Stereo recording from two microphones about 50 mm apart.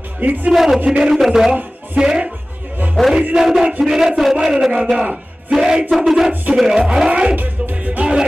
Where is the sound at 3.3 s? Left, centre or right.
Centre.